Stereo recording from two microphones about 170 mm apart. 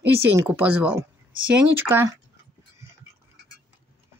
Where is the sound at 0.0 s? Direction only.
10° right (ahead or behind).